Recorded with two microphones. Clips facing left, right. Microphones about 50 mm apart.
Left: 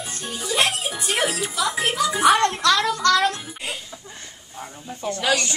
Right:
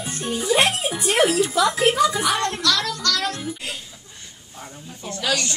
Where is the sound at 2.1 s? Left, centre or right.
Left.